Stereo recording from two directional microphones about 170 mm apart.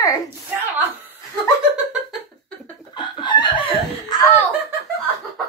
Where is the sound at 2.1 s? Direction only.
5° left (ahead or behind).